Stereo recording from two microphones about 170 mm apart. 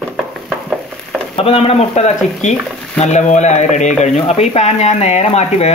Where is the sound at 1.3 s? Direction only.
35° left (ahead or behind).